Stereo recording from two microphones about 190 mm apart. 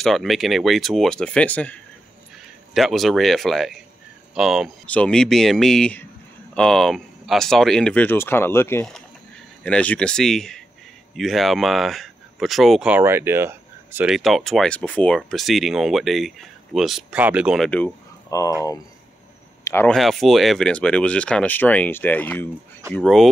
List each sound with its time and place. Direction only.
0.0 s speech: centre (ahead or behind)
17.6 s speech: 10° left (ahead or behind)
20.0 s speech: centre (ahead or behind)